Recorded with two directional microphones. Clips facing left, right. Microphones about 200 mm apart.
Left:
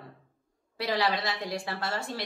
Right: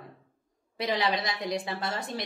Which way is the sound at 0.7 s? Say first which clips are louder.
Even; 20° right (ahead or behind).